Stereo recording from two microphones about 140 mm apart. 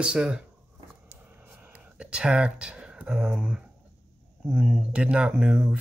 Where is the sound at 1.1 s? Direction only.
15° right (ahead or behind).